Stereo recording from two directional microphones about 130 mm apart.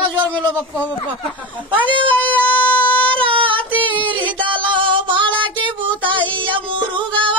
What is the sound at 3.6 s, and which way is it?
Singing, 10° left (ahead or behind).